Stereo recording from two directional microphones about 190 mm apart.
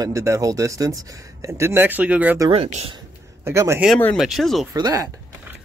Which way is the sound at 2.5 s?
35° right (ahead or behind).